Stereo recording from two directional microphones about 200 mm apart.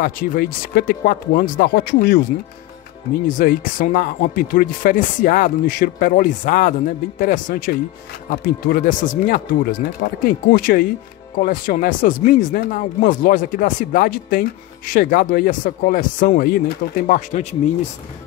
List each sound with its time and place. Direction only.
0.0 s speech: 50° left (ahead or behind)
3.3 s speech: 40° left (ahead or behind)